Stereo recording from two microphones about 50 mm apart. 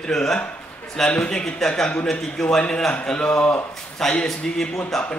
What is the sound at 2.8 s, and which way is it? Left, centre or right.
Speech, left.